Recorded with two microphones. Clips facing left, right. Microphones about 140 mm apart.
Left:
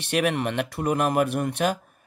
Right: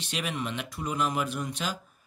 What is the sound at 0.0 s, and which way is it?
Speech, 60° left (ahead or behind).